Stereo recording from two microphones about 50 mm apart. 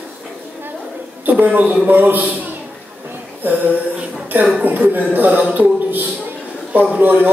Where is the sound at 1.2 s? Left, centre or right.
Right.